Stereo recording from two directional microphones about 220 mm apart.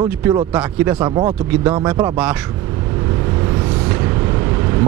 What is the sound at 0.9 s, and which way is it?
Speech, 20° right (ahead or behind).